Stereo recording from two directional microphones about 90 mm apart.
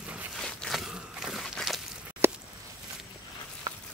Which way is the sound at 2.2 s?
25° right (ahead or behind).